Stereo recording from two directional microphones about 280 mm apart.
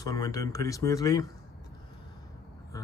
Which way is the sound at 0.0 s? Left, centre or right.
Centre.